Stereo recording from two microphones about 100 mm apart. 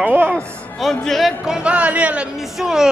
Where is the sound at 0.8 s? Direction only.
Centre (ahead or behind).